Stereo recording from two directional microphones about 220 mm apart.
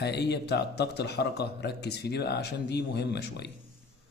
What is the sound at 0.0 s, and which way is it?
A man's voice, 50° left (ahead or behind).